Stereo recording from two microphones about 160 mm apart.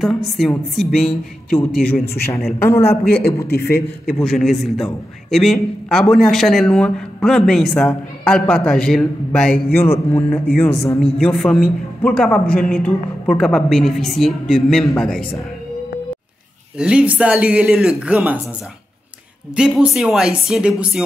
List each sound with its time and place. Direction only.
0.4 s a man's voice: centre (ahead or behind)
2.2 s a woman's voice: 15° left (ahead or behind)
3.4 s a man's voice: 80° left
4.0 s a man's voice: 5° left (ahead or behind)
16.7 s speech: 5° right (ahead or behind)
19.5 s a man's voice: 5° right (ahead or behind)